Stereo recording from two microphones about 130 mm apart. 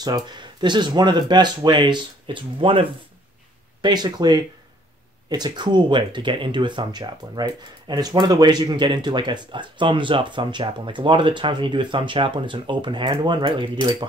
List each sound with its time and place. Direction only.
0.0 s speech: 35° right (ahead or behind)
3.8 s speech: 35° right (ahead or behind)